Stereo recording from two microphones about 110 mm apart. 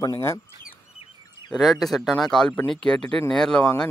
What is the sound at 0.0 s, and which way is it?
Speech, 30° left (ahead or behind).